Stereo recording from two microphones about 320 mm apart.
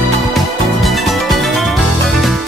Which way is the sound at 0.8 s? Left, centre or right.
Centre.